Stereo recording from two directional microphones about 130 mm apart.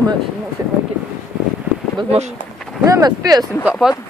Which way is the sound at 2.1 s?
60° right (ahead or behind).